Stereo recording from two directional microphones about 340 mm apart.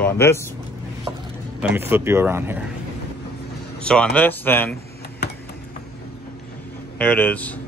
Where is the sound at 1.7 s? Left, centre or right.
Centre.